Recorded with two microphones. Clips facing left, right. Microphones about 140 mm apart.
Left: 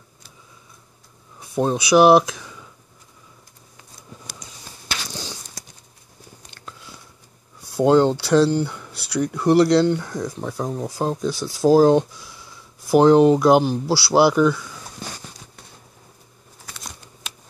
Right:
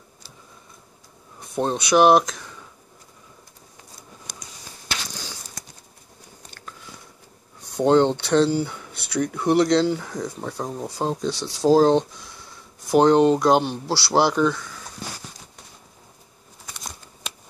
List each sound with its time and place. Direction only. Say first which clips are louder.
1.4 s speech: left 3 dB; 5° left (ahead or behind)
5.1 s a sound: left 4 dB; 25° left (ahead or behind)
7.7 s speech: left 2 dB; 5° left (ahead or behind)